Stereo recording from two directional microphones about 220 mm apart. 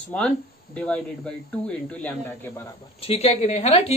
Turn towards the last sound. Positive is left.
turn(degrees=30)  # may be behind; listen again after turning